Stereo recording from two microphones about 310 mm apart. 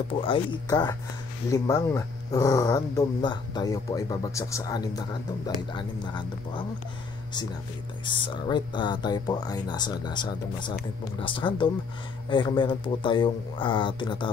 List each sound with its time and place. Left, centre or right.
0.1 s speech: centre
8.0 s speech: centre